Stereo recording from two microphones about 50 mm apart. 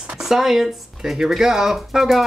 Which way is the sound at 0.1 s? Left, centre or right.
Centre.